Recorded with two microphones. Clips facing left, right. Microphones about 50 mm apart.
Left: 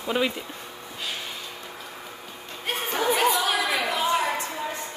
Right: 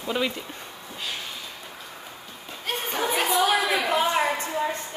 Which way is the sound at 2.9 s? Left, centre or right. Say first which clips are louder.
Left 1 dB; centre.